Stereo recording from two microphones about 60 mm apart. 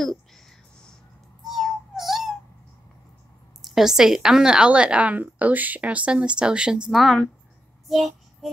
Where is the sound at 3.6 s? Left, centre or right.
Centre.